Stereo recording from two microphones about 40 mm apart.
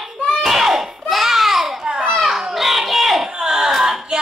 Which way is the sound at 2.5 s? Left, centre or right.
Centre.